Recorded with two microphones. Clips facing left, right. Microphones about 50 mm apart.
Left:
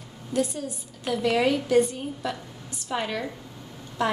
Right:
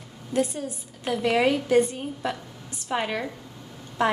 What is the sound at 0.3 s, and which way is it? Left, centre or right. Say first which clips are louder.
A woman's voice: right 1 dB; right.